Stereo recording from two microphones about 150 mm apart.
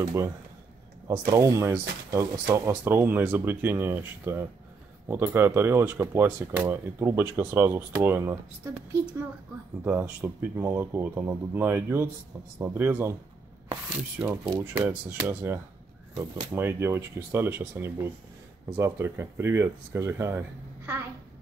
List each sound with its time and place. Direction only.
0.0 s speech: 20° right (ahead or behind)
9.8 s speech: 10° right (ahead or behind)